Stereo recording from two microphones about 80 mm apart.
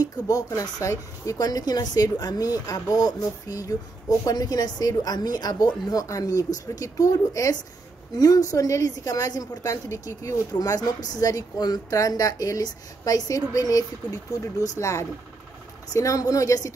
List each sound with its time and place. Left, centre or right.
0.0 s a woman's voice: left